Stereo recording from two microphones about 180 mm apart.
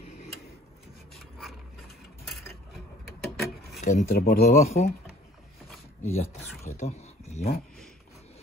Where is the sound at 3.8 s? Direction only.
55° left (ahead or behind).